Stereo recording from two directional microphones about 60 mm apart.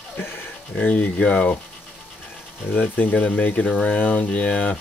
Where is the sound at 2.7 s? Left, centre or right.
Left.